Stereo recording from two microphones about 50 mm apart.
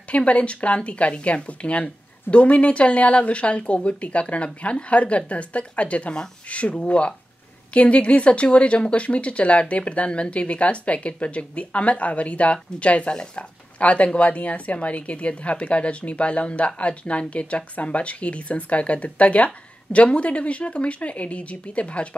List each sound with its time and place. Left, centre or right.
0.1 s speech: left